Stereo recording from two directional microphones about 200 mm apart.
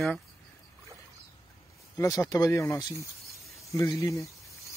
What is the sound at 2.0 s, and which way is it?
Speech, 15° left (ahead or behind).